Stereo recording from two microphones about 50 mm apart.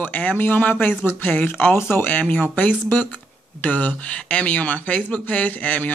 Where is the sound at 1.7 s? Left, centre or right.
Left.